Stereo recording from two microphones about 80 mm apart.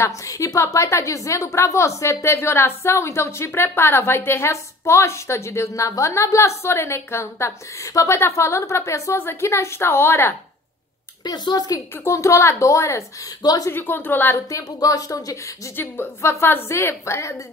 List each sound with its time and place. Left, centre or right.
0.0 s a woman's voice: left
11.2 s speech: left
12.0 s a woman's voice: left
13.4 s speech: left
13.7 s a woman's voice: left
14.5 s speech: left
15.7 s a woman's voice: left